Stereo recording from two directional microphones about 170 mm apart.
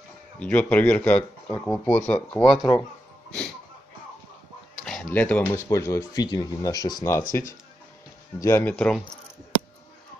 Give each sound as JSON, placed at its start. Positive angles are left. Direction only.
{"t": 0.4, "sound": "speech", "side_deg": 10}
{"t": 4.7, "sound": "speech", "side_deg": 0}
{"t": 8.4, "sound": "speech", "side_deg": 15}